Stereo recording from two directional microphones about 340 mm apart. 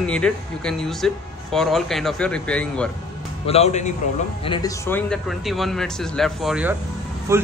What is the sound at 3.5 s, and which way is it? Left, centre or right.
A man's voice, centre.